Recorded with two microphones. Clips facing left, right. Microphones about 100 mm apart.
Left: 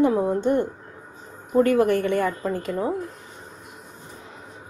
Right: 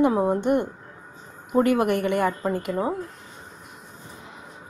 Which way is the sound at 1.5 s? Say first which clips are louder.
Left 2 dB; 15° right (ahead or behind).